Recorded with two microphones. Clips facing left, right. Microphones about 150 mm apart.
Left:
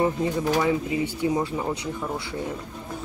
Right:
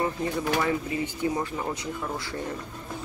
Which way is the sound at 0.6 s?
15° left (ahead or behind).